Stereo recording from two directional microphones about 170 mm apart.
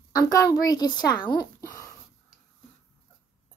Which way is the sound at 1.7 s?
15° left (ahead or behind).